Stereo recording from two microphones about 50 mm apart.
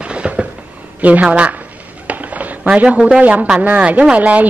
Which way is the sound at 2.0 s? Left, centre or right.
Right.